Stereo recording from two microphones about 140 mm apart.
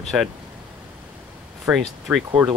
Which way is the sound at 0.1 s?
5° right (ahead or behind).